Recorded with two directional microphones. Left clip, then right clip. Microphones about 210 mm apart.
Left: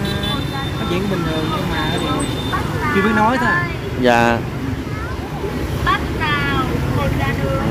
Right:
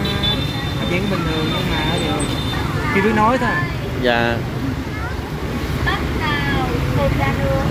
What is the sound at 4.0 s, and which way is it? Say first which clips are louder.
Speech: left 4 dB; 20° left (ahead or behind).